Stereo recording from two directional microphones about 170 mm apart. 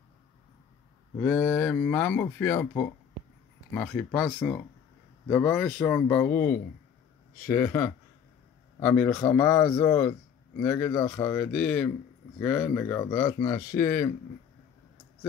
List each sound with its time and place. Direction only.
1.2 s speech: 10° left (ahead or behind)